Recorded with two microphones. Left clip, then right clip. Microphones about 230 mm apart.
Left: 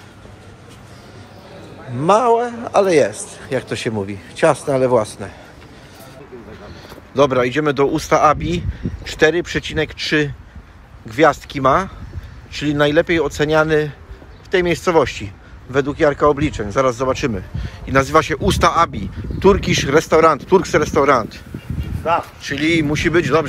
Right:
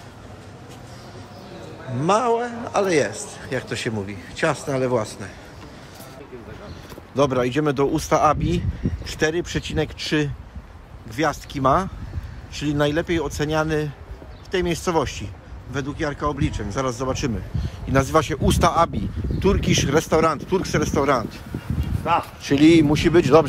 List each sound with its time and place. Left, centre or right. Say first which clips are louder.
2.0 s a man's voice: left 6 dB; centre
7.2 s a man's voice: left 5 dB; centre
22.5 s speech: right 3 dB; right